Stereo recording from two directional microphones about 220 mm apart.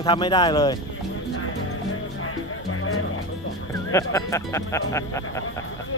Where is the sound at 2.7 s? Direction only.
75° left (ahead or behind).